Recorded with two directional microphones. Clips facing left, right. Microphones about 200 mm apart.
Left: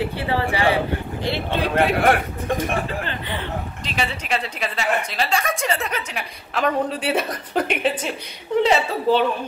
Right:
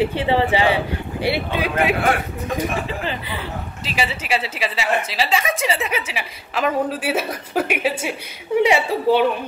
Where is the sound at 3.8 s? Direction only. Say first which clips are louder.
Right 3 dB; 5° right (ahead or behind).